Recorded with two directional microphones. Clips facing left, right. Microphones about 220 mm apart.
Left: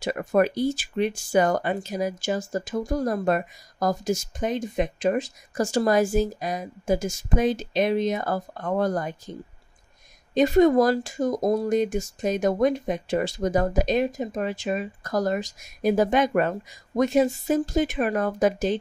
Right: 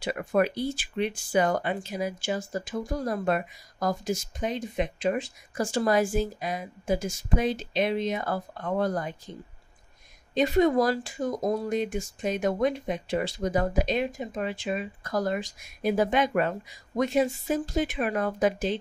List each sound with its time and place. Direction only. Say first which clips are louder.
0.0 s speech: left 3 dB; 45° left (ahead or behind)
10.3 s speech: left 4 dB; 45° left (ahead or behind)